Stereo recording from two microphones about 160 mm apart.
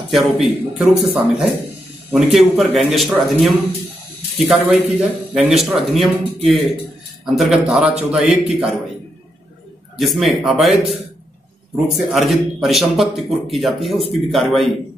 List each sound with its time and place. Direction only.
0.1 s speech: centre (ahead or behind)
9.9 s speech: centre (ahead or behind)